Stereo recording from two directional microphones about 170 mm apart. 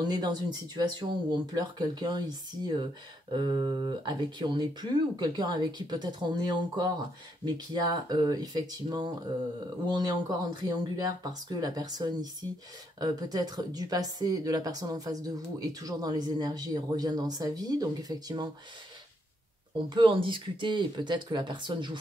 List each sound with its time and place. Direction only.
0.0 s speech: 25° right (ahead or behind)
19.9 s speech: 30° right (ahead or behind)